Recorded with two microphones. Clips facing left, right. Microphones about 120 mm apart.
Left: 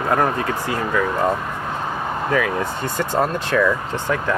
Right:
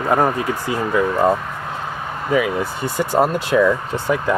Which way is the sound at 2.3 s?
10° right (ahead or behind).